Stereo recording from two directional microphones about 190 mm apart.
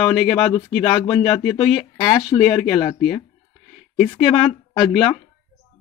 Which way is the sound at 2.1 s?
20° left (ahead or behind).